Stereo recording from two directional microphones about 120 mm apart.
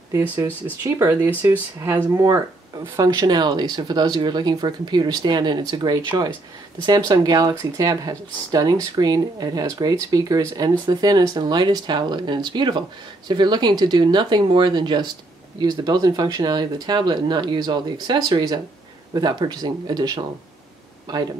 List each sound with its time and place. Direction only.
0.1 s speech: 25° right (ahead or behind)